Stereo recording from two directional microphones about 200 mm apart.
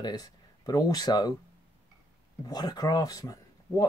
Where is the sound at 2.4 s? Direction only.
20° left (ahead or behind).